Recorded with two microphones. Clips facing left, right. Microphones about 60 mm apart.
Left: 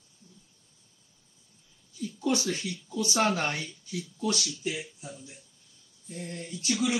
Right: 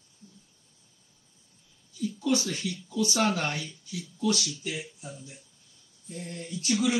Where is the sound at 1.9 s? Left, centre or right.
Left.